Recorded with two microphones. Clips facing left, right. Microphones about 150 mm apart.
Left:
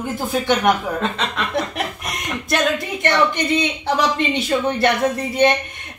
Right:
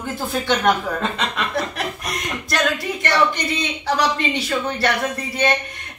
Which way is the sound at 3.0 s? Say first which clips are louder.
Left 2 dB; 20° left (ahead or behind).